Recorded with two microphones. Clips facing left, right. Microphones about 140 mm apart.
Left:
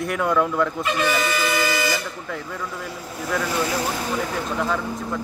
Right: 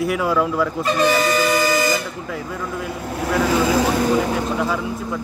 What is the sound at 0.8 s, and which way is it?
Vehicle, 40° right (ahead or behind).